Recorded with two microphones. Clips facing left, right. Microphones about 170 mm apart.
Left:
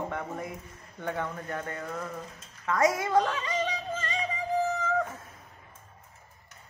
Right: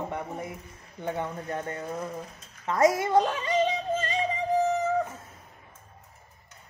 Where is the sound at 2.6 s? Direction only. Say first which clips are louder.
Right 3 dB; 25° right (ahead or behind).